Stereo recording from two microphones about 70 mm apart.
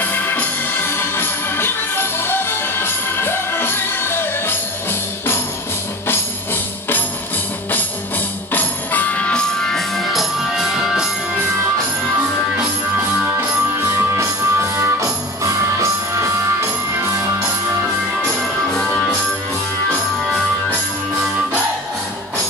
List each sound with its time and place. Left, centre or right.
0.0 s music: left
6.0 s music: left
8.5 s music: left
9.4 s music: centre
13.7 s music: right